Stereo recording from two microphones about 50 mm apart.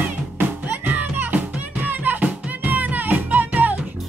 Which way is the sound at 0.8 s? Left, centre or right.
Right.